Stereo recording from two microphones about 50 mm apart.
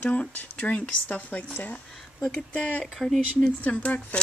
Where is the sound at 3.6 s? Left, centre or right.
Left.